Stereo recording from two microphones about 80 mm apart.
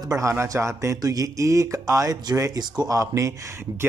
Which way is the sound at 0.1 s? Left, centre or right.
Right.